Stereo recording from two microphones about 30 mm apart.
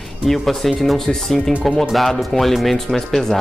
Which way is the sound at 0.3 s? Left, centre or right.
Centre.